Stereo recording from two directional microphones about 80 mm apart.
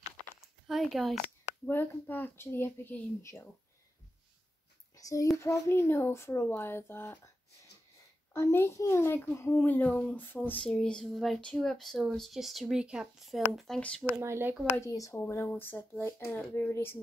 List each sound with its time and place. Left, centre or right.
0.7 s speech: centre
1.7 s speech: left
4.9 s a child's voice: left
8.3 s speech: left
9.7 s speech: centre
10.7 s a sound: centre
11.6 s speech: centre
13.7 s a sound: centre
14.2 s speech: right
14.8 s speech: left